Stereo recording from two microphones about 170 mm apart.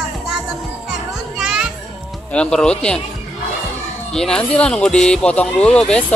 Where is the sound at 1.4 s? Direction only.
5° right (ahead or behind).